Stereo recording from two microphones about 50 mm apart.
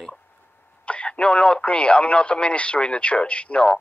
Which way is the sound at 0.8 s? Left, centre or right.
Left.